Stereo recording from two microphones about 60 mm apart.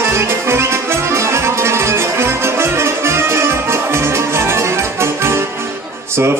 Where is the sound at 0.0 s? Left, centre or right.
Right.